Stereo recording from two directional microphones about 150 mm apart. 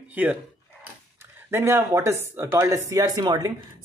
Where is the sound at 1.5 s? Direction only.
15° right (ahead or behind).